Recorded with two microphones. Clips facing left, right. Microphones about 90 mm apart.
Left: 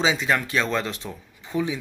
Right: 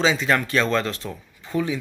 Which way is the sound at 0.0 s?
10° left (ahead or behind).